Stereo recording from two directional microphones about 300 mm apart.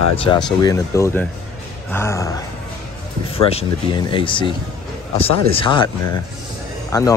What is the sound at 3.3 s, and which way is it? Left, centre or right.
Speech, centre.